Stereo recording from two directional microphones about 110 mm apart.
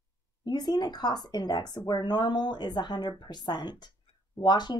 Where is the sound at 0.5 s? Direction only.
40° left (ahead or behind).